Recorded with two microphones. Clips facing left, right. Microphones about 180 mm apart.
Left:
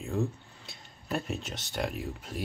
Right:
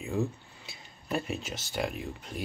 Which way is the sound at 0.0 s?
Centre (ahead or behind).